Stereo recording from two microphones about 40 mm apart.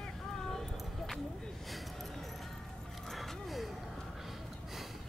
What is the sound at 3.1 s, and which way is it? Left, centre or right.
Music, centre.